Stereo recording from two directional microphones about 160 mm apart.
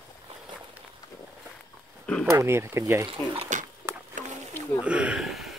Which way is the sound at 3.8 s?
15° right (ahead or behind).